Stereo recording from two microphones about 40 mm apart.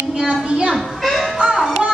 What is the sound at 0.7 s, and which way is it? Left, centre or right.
Children playing, centre.